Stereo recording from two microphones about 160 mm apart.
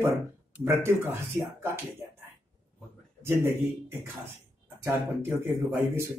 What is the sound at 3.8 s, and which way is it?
Speech, 15° right (ahead or behind).